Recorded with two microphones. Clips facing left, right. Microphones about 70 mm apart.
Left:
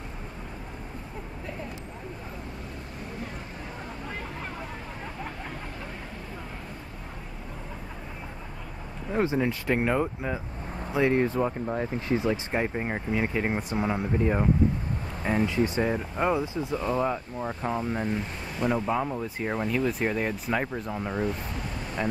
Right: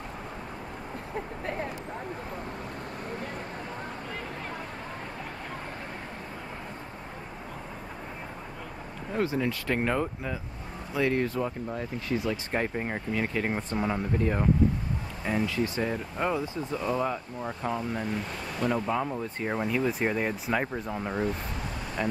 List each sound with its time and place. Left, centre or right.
1.4 s a sound: right
9.1 s speech: left
12.5 s speech: centre
15.2 s speech: left
18.6 s speech: centre